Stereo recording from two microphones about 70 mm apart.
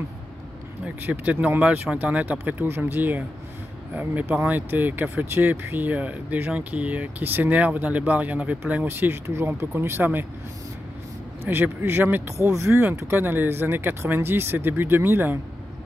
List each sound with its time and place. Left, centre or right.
1.2 s speech: right
8.8 s speech: right
11.4 s speech: right
12.4 s speech: right